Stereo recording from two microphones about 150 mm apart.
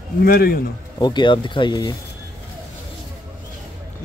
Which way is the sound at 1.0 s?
30° left (ahead or behind).